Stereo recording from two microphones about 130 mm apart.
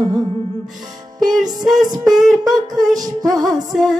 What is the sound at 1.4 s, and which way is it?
Music, 30° right (ahead or behind).